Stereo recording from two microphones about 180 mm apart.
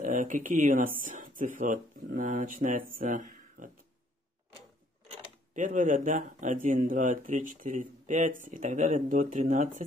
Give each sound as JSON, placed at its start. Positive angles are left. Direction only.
{"t": 0.0, "sound": "speech", "side_deg": -45}
{"t": 2.9, "sound": "a sound", "side_deg": -50}
{"t": 5.5, "sound": "speech", "side_deg": -45}